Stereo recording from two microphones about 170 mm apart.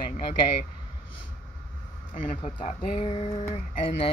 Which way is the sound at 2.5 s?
35° left (ahead or behind).